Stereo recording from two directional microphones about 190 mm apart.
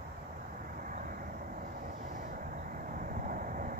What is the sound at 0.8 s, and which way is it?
Vehicle, 45° right (ahead or behind).